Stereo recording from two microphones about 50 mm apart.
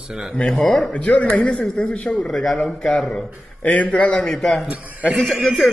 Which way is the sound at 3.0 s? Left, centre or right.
Left.